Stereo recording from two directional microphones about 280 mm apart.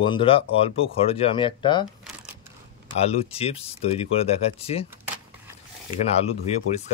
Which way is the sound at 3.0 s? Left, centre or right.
Left.